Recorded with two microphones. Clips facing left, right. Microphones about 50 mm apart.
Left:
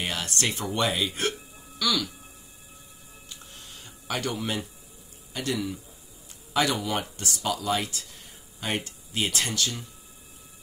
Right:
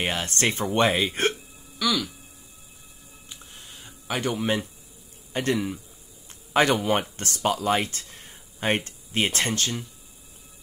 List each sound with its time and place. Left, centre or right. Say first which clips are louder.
0.0 s speech: right 4 dB; right
1.8 s speech: right 2 dB; centre
3.8 s speech: right 3 dB; centre
5.3 s speech: right 4 dB; right